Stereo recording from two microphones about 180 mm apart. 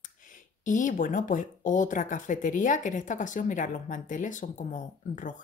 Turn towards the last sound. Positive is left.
turn(degrees=45)  # may be behind; listen again after turning